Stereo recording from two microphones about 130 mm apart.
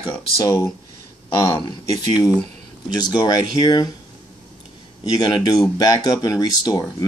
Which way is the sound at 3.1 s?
30° left (ahead or behind).